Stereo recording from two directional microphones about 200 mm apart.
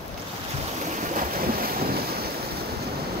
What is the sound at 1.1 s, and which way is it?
Boat, 50° right (ahead or behind).